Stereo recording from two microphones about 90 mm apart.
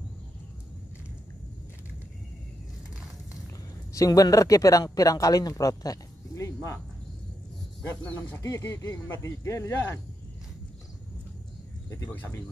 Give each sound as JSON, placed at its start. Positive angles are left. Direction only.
{"t": 3.9, "sound": "speech", "side_deg": 40}
{"t": 8.0, "sound": "speech", "side_deg": 20}
{"t": 8.4, "sound": "speech", "side_deg": 35}
{"t": 12.1, "sound": "speech", "side_deg": 20}